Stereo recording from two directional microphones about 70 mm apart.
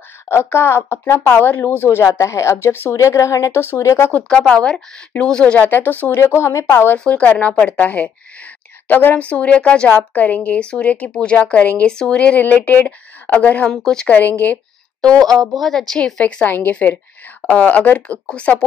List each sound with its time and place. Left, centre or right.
0.3 s a woman's voice: left
2.1 s speech: left
2.9 s a woman's voice: left
4.3 s a woman's voice: centre
6.1 s a woman's voice: left
7.1 s speech: centre
13.7 s a woman's voice: centre
14.1 s speech: left
15.0 s a woman's voice: centre
16.4 s speech: left